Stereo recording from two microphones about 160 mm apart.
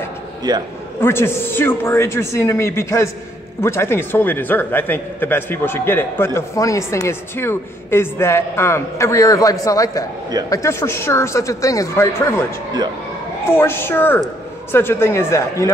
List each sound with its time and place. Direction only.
0.4 s a man's voice: 25° right (ahead or behind)
1.0 s a man's voice: 15° left (ahead or behind)
13.6 s a man's voice: 15° left (ahead or behind)